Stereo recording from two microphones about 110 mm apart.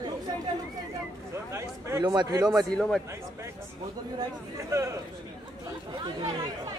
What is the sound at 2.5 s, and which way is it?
Speech, 5° left (ahead or behind).